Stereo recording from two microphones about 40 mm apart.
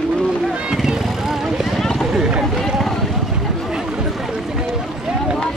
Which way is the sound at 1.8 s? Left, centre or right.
Centre.